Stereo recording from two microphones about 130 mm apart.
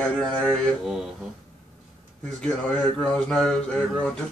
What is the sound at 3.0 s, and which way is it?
Speech, 5° left (ahead or behind).